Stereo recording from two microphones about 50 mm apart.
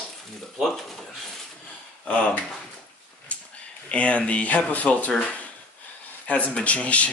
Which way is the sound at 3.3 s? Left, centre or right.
Left.